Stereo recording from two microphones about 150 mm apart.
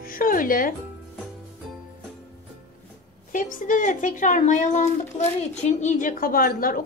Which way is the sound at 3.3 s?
60° left (ahead or behind).